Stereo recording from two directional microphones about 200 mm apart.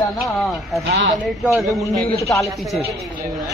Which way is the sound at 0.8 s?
65° right (ahead or behind).